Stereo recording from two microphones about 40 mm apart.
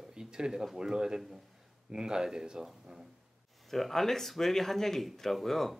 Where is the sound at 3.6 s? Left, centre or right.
Centre.